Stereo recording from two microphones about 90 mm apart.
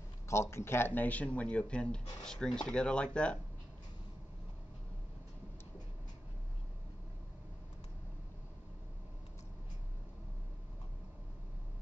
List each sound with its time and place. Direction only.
0.3 s speech: 30° left (ahead or behind); by 3.3 s 10° left (ahead or behind)